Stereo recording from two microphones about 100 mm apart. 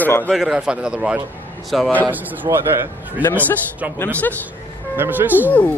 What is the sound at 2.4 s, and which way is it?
Speech, 45° right (ahead or behind).